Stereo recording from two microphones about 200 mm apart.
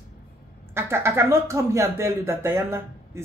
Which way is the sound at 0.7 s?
10° right (ahead or behind).